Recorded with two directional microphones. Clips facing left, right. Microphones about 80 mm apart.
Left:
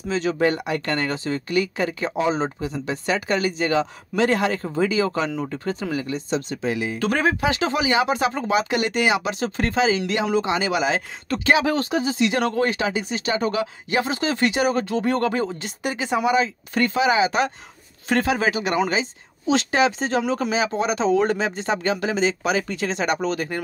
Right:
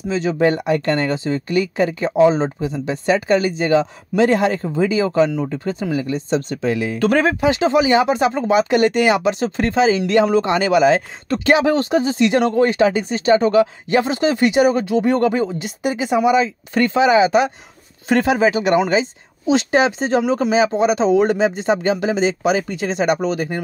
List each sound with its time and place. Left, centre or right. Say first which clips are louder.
0.1 s speech: right 3 dB; right
0.5 s speech: right 6 dB; right
6.5 s speech: right 5 dB; right
7.3 s speech: right 7 dB; right
9.3 s speech: right 5 dB; right
10.3 s speech: right 6 dB; right
11.4 s speech: right 4 dB; right; by 16.2 s centre
16.3 s speech: right 4 dB; right